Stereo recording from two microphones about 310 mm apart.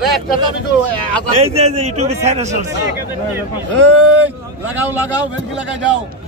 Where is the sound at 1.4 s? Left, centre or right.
Centre.